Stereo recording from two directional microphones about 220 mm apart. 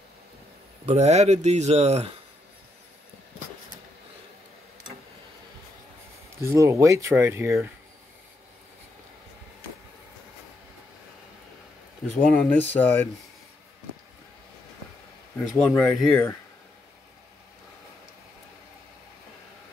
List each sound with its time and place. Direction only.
0.8 s speech: 30° right (ahead or behind)
6.4 s speech: 15° right (ahead or behind)
12.2 s speech: 5° left (ahead or behind)
15.5 s speech: 5° left (ahead or behind)